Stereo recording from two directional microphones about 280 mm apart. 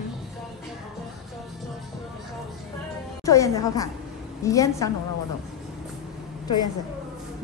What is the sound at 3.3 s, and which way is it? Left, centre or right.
A woman's voice, centre.